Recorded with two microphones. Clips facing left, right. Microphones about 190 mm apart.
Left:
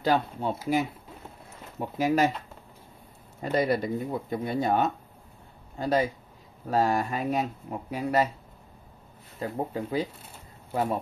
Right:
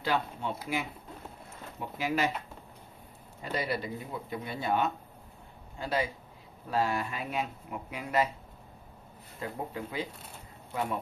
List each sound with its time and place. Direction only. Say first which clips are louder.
0.0 s speech: left 6 dB; 40° left (ahead or behind)
1.8 s speech: left 7 dB; 40° left (ahead or behind)
3.5 s speech: left 8 dB; 45° left (ahead or behind)
9.4 s speech: left 6 dB; 35° left (ahead or behind)